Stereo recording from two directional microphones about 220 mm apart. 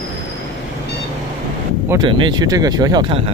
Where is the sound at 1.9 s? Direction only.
20° right (ahead or behind).